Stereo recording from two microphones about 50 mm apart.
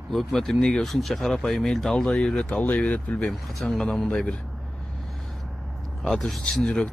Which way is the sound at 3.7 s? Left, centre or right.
Centre.